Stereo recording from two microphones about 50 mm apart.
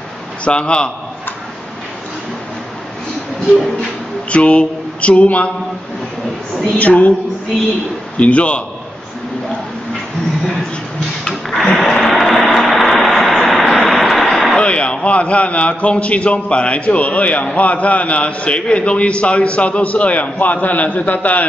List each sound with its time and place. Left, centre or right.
0.5 s a man's voice: left
4.3 s a man's voice: left
6.8 s a man's voice: left
8.2 s a man's voice: left
11.5 s a sound: centre
14.6 s a man's voice: left